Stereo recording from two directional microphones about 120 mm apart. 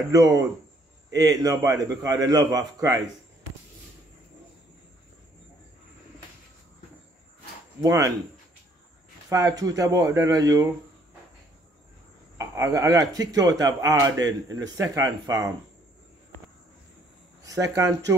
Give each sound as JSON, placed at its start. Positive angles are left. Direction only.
{"t": 0.1, "sound": "speech", "side_deg": -30}
{"t": 7.8, "sound": "speech", "side_deg": -25}
{"t": 9.3, "sound": "speech", "side_deg": -30}
{"t": 12.4, "sound": "speech", "side_deg": -25}
{"t": 17.4, "sound": "speech", "side_deg": -30}